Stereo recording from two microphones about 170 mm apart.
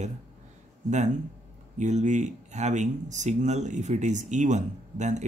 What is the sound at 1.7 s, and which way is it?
Speech, 45° right (ahead or behind).